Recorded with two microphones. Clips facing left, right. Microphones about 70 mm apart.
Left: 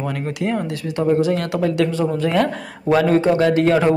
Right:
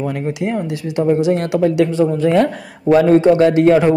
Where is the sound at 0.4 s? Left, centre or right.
Centre.